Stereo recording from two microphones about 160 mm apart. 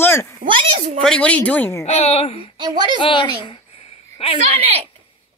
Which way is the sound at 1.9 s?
40° left (ahead or behind).